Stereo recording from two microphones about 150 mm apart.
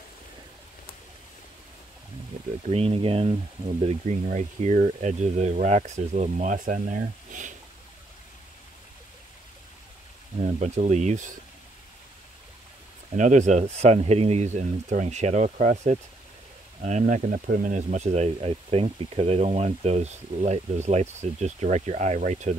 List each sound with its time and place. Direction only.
2.7 s speech: 40° right (ahead or behind); by 7.5 s 60° right (ahead or behind)
10.4 s speech: 50° right (ahead or behind)
13.1 s speech: 55° right (ahead or behind)